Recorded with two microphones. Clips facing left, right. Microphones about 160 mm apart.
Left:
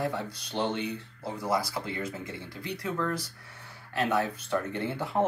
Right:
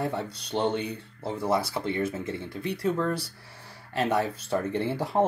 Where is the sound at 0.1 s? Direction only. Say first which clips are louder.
Right 4 dB; 30° right (ahead or behind).